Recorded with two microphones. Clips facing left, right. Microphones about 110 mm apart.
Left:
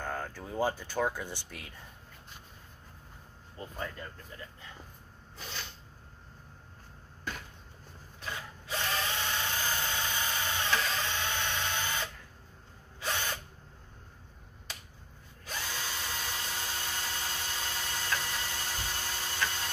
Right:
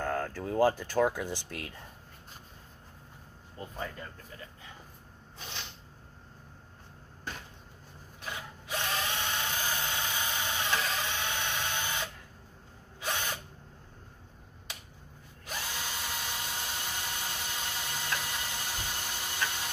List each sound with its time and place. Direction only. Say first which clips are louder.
0.0 s speech: right 5 dB; 90° right
3.7 s speech: even; 5° right (ahead or behind)
5.4 s a sound: left 1 dB; 20° right (ahead or behind)
8.3 s drill: even; 15° right (ahead or behind)
15.4 s drill: even; 15° right (ahead or behind)